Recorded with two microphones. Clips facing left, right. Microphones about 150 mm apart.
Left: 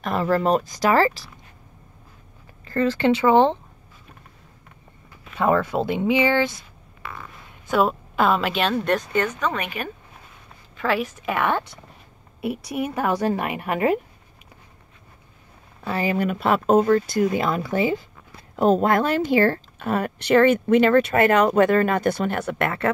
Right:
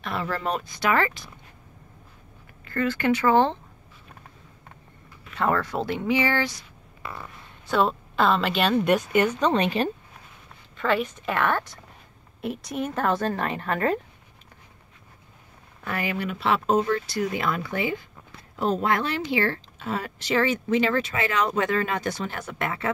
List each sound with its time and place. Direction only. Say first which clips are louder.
0.0 s speech: left 8 dB; 40° left (ahead or behind)
2.6 s speech: left 4 dB; 30° left (ahead or behind)
5.3 s speech: left 4 dB; 15° left (ahead or behind)
7.7 s speech: left 2 dB; 10° left (ahead or behind)
9.1 s speech: right 2 dB; 15° right (ahead or behind)
9.4 s a woman's voice: right 4 dB; 25° right (ahead or behind)
10.8 s a woman's voice: left 1 dB; 5° left (ahead or behind)
15.8 s speech: left 6 dB; 30° left (ahead or behind); by 22.8 s 65° left (ahead or behind)